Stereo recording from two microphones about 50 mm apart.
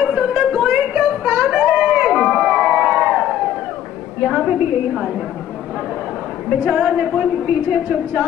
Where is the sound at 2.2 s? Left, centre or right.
Centre.